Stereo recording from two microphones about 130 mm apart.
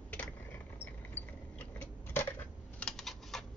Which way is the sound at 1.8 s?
15° left (ahead or behind).